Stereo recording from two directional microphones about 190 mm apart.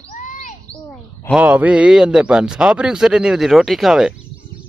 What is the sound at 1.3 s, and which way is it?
A man's voice, 5° right (ahead or behind).